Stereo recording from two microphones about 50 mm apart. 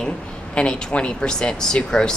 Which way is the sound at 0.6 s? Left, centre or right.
Centre.